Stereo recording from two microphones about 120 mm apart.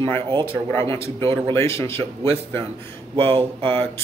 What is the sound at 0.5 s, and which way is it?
Speech, 20° left (ahead or behind).